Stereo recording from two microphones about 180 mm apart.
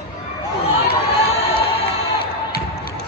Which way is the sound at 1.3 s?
35° left (ahead or behind).